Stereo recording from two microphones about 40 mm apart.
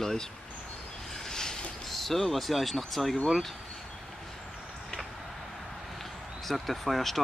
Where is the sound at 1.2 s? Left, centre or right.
Centre.